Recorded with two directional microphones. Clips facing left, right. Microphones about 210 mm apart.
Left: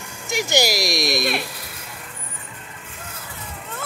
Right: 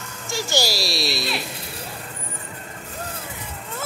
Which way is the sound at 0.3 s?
15° left (ahead or behind).